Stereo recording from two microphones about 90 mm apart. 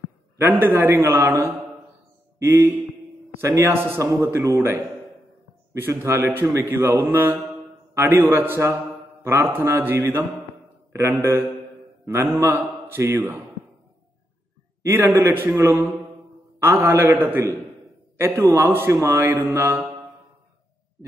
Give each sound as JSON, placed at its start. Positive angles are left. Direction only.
{"t": 0.4, "sound": "speech", "side_deg": -20}
{"t": 4.0, "sound": "a man's voice", "side_deg": -35}
{"t": 4.3, "sound": "a man's voice", "side_deg": -25}
{"t": 11.1, "sound": "a man's voice", "side_deg": -25}
{"t": 14.8, "sound": "speech", "side_deg": -25}
{"t": 18.1, "sound": "a sound", "side_deg": -30}
{"t": 18.5, "sound": "speech", "side_deg": -25}